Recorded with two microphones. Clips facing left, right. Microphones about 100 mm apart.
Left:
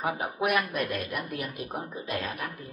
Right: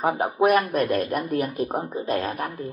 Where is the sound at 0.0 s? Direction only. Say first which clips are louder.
Right 8 dB; 40° right (ahead or behind).